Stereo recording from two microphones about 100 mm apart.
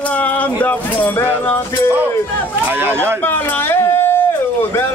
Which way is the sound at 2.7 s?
20° right (ahead or behind).